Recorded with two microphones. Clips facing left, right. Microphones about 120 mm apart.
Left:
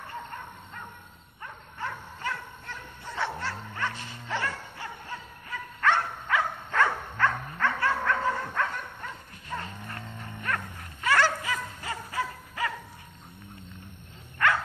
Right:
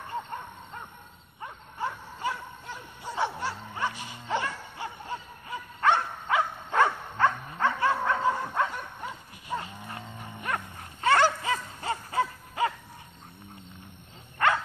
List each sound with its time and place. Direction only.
1.4 s bow-wow: 15° right (ahead or behind)
14.4 s dog: 25° right (ahead or behind)